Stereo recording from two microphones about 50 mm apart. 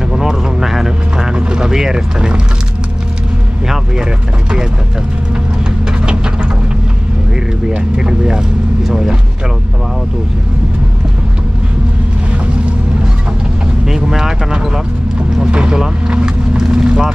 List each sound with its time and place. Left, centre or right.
0.1 s vehicle: centre
3.6 s speech: centre
7.7 s speech: centre
13.8 s speech: centre
16.1 s vehicle: centre